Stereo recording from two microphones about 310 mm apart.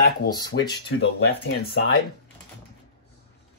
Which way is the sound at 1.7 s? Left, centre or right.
Left.